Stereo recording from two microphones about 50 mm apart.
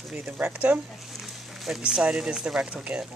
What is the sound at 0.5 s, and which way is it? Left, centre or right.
Speech, right.